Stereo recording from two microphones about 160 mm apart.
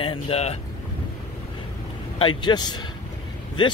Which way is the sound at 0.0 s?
35° left (ahead or behind).